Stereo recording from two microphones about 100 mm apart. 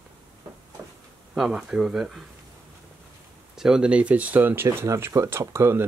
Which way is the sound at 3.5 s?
5° right (ahead or behind).